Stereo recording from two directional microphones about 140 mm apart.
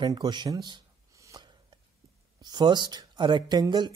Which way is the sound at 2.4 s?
30° right (ahead or behind).